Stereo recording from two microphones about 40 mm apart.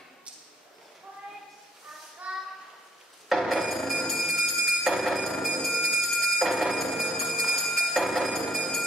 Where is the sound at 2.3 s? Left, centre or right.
Right.